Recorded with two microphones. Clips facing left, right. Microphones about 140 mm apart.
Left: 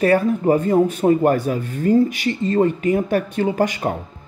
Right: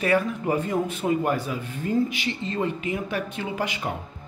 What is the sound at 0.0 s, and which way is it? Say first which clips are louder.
Speech: left 7 dB; 40° left (ahead or behind).